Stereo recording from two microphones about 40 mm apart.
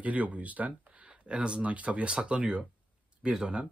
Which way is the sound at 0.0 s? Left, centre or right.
Right.